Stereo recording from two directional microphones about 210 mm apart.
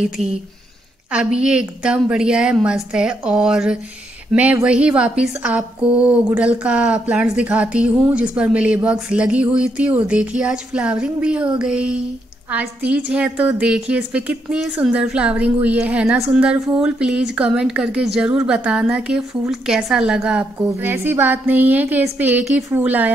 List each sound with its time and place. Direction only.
0.2 s speech: 30° right (ahead or behind)
1.1 s a woman's voice: 5° right (ahead or behind)